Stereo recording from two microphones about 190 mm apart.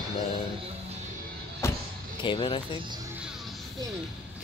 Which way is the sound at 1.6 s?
15° left (ahead or behind).